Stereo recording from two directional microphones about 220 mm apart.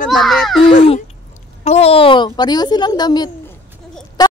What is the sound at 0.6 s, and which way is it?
Speech, 25° left (ahead or behind).